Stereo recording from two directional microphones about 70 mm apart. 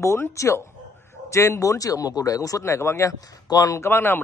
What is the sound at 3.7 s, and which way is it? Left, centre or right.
Speech, left.